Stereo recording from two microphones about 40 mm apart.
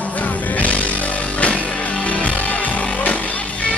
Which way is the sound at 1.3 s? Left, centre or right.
Left.